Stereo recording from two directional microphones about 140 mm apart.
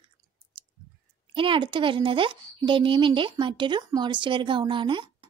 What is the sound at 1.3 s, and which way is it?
A woman's voice, 40° right (ahead or behind).